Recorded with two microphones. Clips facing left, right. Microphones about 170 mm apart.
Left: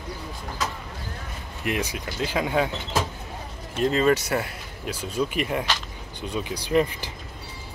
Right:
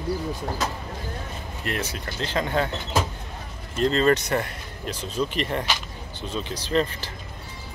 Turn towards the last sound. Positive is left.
turn(degrees=15)  # may be behind; listen again after turning